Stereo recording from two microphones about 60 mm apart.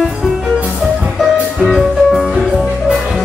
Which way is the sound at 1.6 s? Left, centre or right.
Centre.